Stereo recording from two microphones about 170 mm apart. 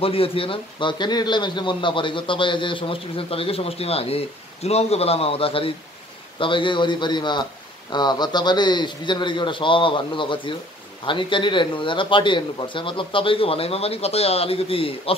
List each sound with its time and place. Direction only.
0.0 s speech: 35° left (ahead or behind)